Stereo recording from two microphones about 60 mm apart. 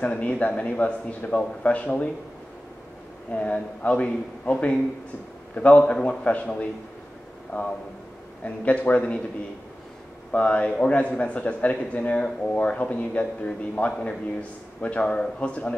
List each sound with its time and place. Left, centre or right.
0.0 s a man's voice: centre
3.3 s a man's voice: left
10.3 s a man's voice: left